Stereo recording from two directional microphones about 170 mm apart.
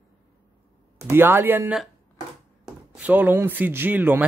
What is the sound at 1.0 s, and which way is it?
Speech, 15° right (ahead or behind).